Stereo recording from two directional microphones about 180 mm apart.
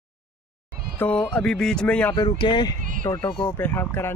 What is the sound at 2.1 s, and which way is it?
Speech, 25° left (ahead or behind).